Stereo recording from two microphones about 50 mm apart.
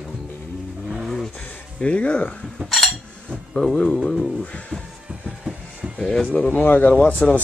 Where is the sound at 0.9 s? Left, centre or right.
Centre.